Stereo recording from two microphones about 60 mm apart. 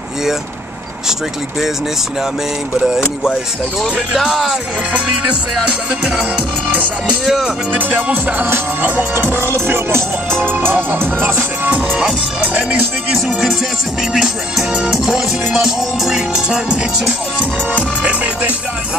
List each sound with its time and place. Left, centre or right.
2.8 s music: centre
4.2 s music: centre
5.7 s music: centre
7.2 s music: centre
7.7 s music: right
8.5 s music: right
10.4 s music: right
13.1 s music: centre
18.0 s music: right